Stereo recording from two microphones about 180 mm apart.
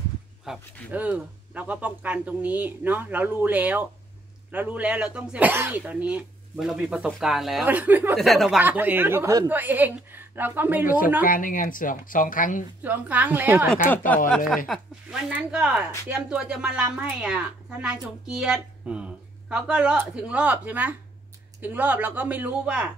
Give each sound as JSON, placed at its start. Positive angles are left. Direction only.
{"t": 0.5, "sound": "speech", "side_deg": -10}
{"t": 8.2, "sound": "speech", "side_deg": 0}
{"t": 11.2, "sound": "speech", "side_deg": 50}
{"t": 12.8, "sound": "speech", "side_deg": -10}
{"t": 13.8, "sound": "speech", "side_deg": 10}
{"t": 14.7, "sound": "speech", "side_deg": -5}